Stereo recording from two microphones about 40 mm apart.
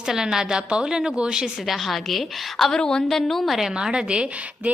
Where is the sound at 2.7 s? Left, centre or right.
Centre.